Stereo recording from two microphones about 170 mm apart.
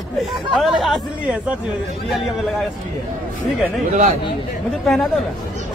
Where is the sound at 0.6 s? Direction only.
Centre (ahead or behind).